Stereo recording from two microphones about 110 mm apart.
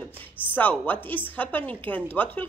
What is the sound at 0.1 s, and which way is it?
A woman's voice, 15° left (ahead or behind).